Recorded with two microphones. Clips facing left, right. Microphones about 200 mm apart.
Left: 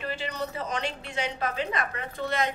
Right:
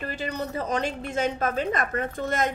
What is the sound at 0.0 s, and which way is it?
A woman's voice, 45° right (ahead or behind).